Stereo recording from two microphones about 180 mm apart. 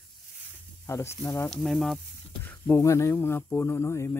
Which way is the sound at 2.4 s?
15° left (ahead or behind).